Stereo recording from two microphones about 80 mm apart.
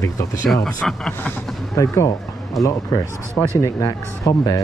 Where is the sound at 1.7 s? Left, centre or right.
Left.